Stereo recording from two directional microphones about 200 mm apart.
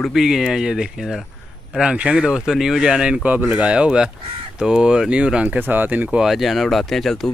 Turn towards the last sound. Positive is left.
turn(degrees=0)  # may be behind; listen again after turning